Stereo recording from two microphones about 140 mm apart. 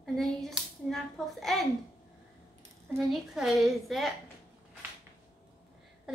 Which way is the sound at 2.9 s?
Centre (ahead or behind).